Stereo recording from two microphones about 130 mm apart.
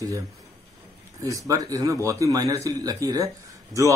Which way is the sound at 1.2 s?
25° right (ahead or behind).